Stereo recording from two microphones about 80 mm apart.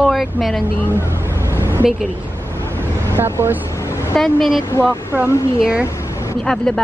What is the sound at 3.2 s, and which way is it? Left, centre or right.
Speech, right.